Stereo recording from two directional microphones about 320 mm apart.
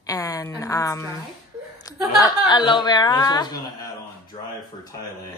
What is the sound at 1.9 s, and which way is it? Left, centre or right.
Chuckle, centre.